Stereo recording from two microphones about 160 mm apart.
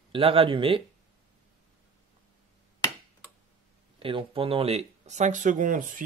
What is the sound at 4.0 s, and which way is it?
Speech, 35° right (ahead or behind).